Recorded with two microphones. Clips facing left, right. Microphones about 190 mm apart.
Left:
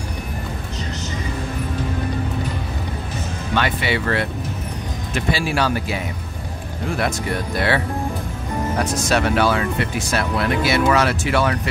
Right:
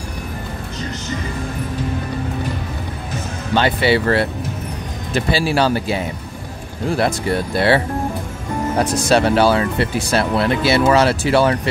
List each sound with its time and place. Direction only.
3.5 s speech: 30° right (ahead or behind)